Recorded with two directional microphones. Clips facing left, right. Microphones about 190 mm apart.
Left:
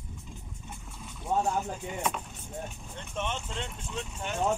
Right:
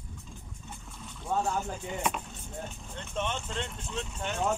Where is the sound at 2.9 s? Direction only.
5° left (ahead or behind).